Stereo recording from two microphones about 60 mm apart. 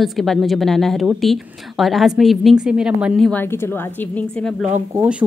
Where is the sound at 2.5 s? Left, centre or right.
Centre.